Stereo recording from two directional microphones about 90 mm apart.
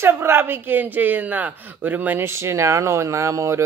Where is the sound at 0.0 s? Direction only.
25° right (ahead or behind).